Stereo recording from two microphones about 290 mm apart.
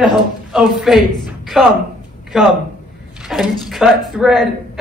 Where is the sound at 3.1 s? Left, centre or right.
Centre.